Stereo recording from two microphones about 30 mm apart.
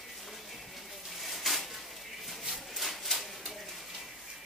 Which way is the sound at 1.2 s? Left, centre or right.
Centre.